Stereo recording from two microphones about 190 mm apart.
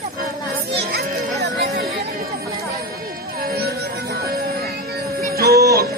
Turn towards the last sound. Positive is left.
turn(degrees=-55)  # may be behind; listen again after turning